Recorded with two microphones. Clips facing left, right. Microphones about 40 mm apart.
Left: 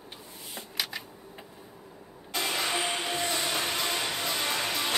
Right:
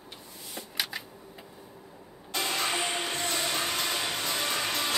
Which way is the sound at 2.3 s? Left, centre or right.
Centre.